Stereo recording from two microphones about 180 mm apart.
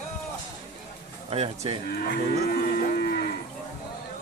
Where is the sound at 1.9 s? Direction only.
60° left (ahead or behind).